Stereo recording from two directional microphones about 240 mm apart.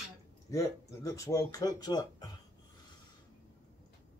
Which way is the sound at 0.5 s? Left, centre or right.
Centre.